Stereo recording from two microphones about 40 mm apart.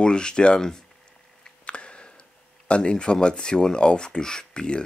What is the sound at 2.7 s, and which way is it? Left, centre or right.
Speech, left.